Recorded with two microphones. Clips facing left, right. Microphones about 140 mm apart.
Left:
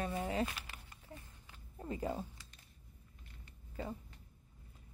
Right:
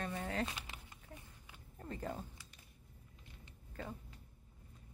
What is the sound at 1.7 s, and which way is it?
Speech, 10° left (ahead or behind).